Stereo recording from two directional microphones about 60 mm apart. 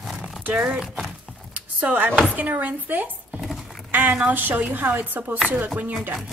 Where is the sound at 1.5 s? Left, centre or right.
Right.